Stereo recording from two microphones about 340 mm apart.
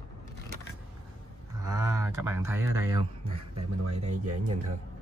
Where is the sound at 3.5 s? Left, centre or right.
Right.